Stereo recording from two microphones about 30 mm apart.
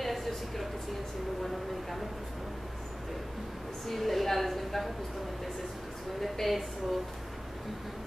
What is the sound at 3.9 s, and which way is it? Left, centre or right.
A woman's voice, centre.